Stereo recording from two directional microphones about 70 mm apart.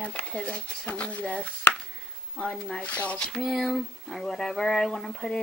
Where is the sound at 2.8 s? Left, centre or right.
Centre.